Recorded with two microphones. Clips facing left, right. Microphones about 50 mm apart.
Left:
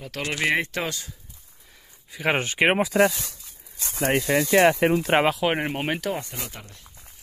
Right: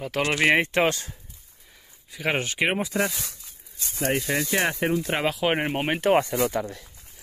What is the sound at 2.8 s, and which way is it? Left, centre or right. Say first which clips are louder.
Speech: left 6 dB; left.